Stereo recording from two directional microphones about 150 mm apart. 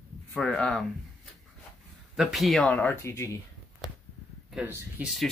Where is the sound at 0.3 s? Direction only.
5° left (ahead or behind).